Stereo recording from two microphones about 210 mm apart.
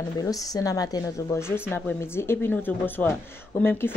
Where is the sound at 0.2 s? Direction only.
15° left (ahead or behind).